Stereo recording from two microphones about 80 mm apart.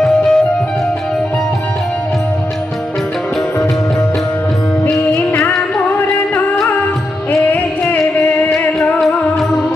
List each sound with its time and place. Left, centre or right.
0.0 s music: centre
7.4 s music: centre
8.5 s music: centre